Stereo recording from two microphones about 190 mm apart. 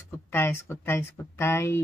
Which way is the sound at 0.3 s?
10° left (ahead or behind).